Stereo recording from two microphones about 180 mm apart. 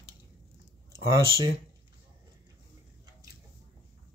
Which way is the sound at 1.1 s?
20° right (ahead or behind).